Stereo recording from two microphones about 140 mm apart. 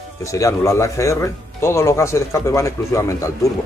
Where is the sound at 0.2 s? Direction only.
20° left (ahead or behind).